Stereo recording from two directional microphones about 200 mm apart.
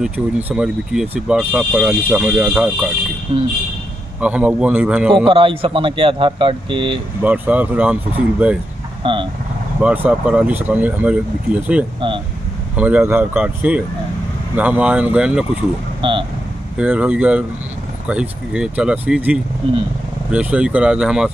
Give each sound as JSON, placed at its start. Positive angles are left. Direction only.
{"t": 0.0, "sound": "speech", "side_deg": -5}
{"t": 3.3, "sound": "a man's voice", "side_deg": -25}
{"t": 4.2, "sound": "speech", "side_deg": -5}
{"t": 5.1, "sound": "a man's voice", "side_deg": -25}
{"t": 7.2, "sound": "speech", "side_deg": -10}
{"t": 9.0, "sound": "a man's voice", "side_deg": -25}
{"t": 9.8, "sound": "speech", "side_deg": -5}
{"t": 16.0, "sound": "speech", "side_deg": -25}
{"t": 16.7, "sound": "speech", "side_deg": -5}
{"t": 19.6, "sound": "a man's voice", "side_deg": -25}
{"t": 20.2, "sound": "speech", "side_deg": -5}